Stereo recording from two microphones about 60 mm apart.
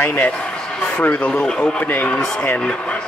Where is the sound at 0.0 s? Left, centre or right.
Left.